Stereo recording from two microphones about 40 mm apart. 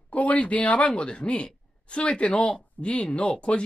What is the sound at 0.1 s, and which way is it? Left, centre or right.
Speech, left.